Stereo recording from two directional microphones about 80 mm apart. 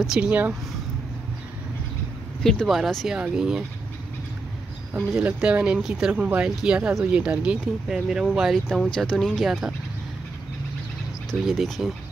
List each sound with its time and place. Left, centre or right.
0.0 s speech: centre
0.3 s speech: centre
2.4 s speech: centre
5.2 s speech: centre
6.2 s speech: right; by 9.8 s centre
11.2 s speech: centre